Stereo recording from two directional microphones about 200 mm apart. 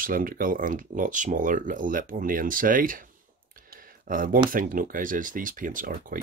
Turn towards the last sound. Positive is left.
turn(degrees=-40)  # may be behind; listen again after turning